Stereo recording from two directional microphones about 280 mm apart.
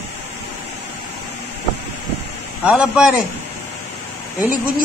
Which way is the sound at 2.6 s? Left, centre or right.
Centre.